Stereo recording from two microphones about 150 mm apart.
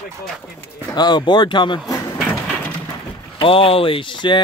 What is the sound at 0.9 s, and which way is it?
Speech, 30° left (ahead or behind).